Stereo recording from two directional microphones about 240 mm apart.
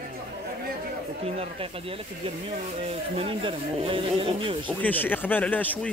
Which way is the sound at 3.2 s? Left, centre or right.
Right.